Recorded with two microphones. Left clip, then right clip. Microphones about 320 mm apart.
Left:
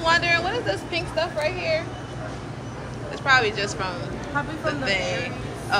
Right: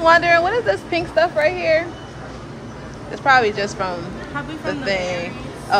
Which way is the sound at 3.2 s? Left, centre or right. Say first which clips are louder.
Right 5 dB; centre.